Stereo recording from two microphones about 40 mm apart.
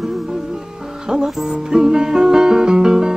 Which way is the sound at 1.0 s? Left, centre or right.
Centre.